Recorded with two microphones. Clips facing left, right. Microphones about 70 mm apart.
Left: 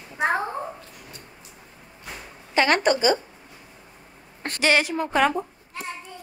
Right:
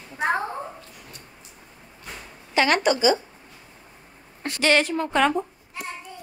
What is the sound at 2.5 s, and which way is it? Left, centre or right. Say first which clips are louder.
Speech: even; left.